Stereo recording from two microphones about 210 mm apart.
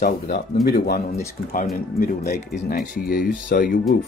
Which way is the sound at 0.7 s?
45° left (ahead or behind).